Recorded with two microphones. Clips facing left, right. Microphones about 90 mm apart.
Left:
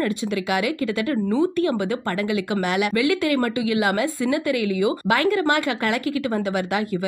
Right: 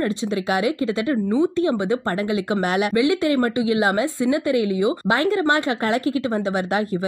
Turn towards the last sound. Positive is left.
turn(degrees=-30)  # may be behind; listen again after turning